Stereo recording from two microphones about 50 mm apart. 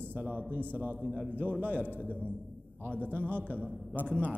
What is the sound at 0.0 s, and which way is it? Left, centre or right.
A man's voice, right.